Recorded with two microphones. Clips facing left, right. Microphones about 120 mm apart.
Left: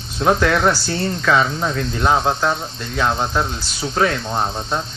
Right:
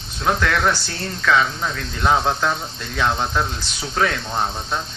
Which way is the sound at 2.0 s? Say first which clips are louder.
Left 1 dB; 5° left (ahead or behind).